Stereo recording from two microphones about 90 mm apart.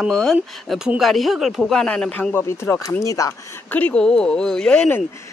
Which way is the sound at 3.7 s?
15° left (ahead or behind).